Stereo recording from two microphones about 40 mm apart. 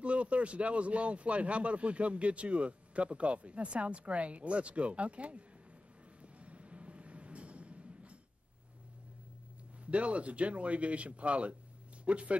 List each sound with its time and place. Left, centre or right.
0.0 s speech: right
6.2 s a sound: right
9.8 s speech: right